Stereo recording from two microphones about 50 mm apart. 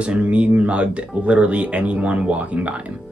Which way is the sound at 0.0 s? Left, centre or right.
Right.